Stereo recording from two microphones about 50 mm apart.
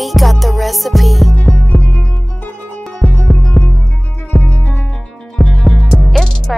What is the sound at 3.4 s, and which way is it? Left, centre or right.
Music, left.